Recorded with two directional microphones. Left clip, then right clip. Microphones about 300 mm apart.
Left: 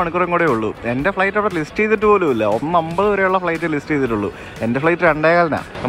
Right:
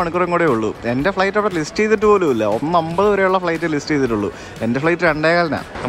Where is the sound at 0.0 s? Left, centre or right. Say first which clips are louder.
Even; centre.